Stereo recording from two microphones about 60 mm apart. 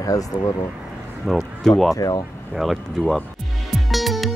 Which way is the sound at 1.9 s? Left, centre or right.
Left.